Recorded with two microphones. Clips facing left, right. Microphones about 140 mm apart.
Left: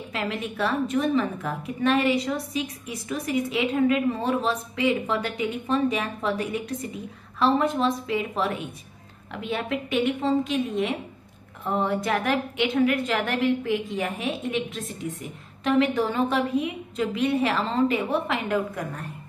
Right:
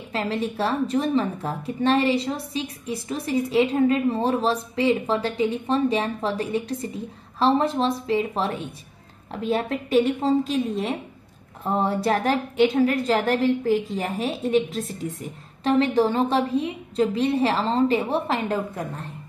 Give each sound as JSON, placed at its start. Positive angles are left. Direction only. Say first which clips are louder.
{"t": 0.1, "sound": "a woman's voice", "louder": "right 4 dB", "side_deg": -30}